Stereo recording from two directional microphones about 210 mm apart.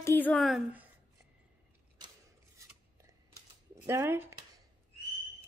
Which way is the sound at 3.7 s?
15° right (ahead or behind).